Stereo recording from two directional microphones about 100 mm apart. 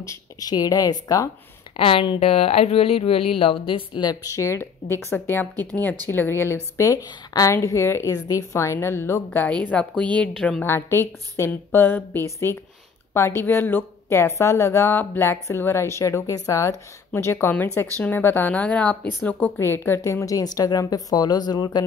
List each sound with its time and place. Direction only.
0.0 s speech: 35° left (ahead or behind)
1.8 s speech: 65° left (ahead or behind); by 9.5 s 25° left (ahead or behind)
9.5 s a woman's voice: 10° left (ahead or behind)
10.6 s a woman's voice: 25° left (ahead or behind); by 21.8 s 45° left (ahead or behind)